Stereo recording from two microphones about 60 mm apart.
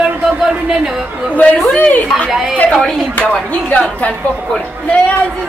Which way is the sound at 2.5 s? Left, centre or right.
Left.